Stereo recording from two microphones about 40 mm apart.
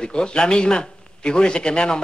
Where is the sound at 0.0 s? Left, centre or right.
Left.